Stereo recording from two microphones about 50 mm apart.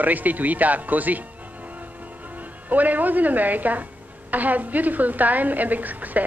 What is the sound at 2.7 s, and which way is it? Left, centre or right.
A woman's voice, right.